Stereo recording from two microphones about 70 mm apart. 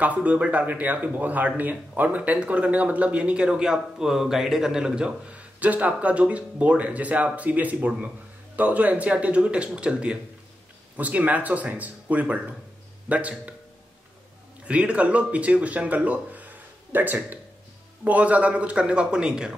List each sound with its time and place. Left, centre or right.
0.0 s a man's voice: right
14.6 s speech: centre